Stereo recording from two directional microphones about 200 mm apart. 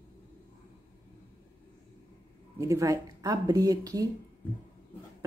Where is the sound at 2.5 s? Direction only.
15° right (ahead or behind).